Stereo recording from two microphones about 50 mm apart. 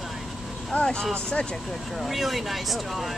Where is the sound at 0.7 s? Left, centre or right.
Left.